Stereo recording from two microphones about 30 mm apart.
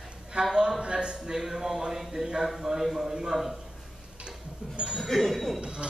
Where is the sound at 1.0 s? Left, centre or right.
Right.